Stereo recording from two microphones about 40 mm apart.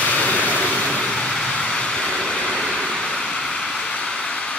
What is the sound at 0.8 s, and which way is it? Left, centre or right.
Vehicle, centre.